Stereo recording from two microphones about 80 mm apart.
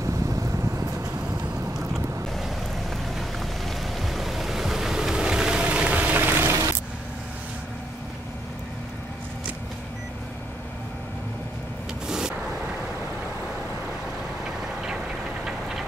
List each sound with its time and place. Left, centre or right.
0.0 s vehicle: right
1.8 s vehicle: centre; by 6.7 s right
12.1 s vehicle: centre
14.4 s vehicle: centre